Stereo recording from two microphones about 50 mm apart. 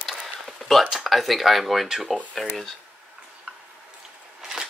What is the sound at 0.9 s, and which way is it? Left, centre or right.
Speech, centre.